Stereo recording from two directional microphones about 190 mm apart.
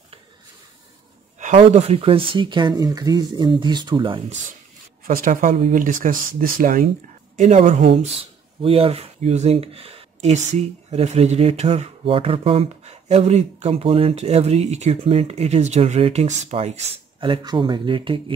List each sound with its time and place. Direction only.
1.6 s speech: 35° right (ahead or behind)
5.0 s speech: 45° right (ahead or behind); by 18.2 s 25° right (ahead or behind)